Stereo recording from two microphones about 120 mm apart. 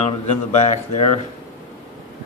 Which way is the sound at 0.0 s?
65° left (ahead or behind).